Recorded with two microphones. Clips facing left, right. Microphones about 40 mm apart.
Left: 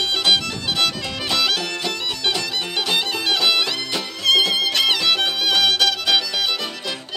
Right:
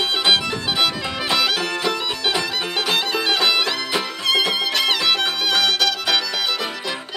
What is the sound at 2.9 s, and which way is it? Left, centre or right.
Music, centre.